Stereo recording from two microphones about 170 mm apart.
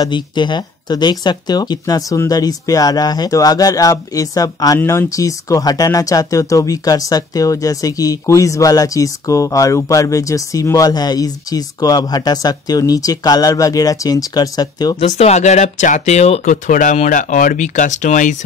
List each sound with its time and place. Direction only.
0.0 s speech: 25° left (ahead or behind)
15.0 s speech: 35° left (ahead or behind)